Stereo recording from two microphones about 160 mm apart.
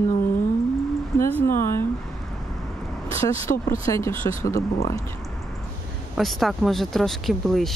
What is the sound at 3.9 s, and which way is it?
Speech, 20° left (ahead or behind).